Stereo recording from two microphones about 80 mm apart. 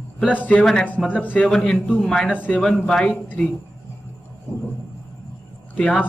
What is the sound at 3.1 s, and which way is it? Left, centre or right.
Speech, left.